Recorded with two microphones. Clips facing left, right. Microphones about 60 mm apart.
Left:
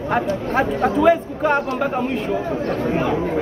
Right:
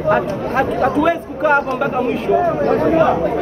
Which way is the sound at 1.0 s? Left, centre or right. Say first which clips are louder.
Even; centre.